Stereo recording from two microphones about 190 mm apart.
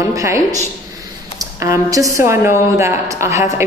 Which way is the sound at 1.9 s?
15° right (ahead or behind).